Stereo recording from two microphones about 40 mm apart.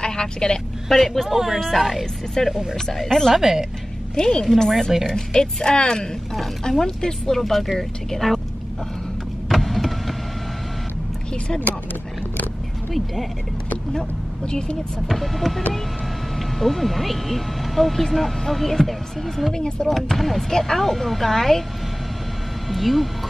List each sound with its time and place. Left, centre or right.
0.0 s a woman's voice: centre
0.8 s speech: centre
1.3 s speech: centre
1.6 s speech: centre
3.3 s speech: centre
4.1 s a woman's voice: centre
9.5 s power windows: centre
12.9 s speech: centre
13.9 s speech: centre
15.0 s speech: centre
22.7 s speech: centre